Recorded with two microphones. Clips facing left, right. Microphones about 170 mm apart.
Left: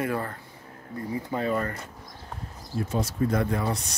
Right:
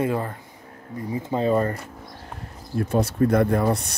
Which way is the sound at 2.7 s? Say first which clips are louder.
Right 6 dB; 60° right (ahead or behind).